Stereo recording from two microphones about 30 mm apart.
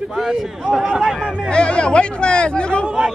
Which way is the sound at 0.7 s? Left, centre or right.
Centre.